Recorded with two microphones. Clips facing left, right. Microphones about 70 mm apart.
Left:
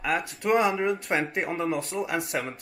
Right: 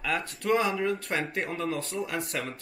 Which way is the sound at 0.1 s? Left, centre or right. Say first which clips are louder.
Left 3 dB; centre.